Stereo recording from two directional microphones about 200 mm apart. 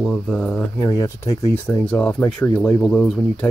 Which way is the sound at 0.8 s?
15° left (ahead or behind).